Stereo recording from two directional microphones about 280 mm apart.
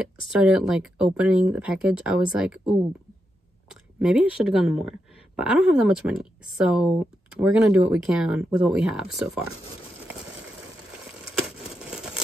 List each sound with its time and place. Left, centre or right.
0.3 s a woman's voice: centre
4.0 s a woman's voice: centre